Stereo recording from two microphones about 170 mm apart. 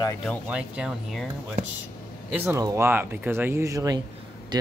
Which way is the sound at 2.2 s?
10° right (ahead or behind).